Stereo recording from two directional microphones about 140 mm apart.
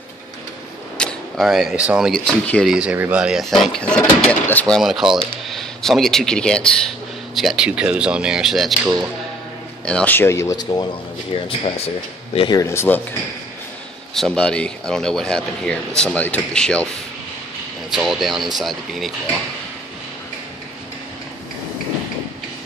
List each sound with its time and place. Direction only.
0.9 s speech: 5° left (ahead or behind)
2.7 s speech: 5° right (ahead or behind); by 4.7 s 10° left (ahead or behind)
4.7 s speech: centre (ahead or behind)
9.8 s speech: 10° left (ahead or behind); by 10.9 s 30° left (ahead or behind)
11.3 s speech: 40° left (ahead or behind)
12.5 s speech: 20° left (ahead or behind)
14.1 s speech: 5° left (ahead or behind)